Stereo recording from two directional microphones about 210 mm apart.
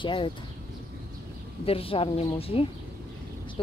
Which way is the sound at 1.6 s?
25° left (ahead or behind).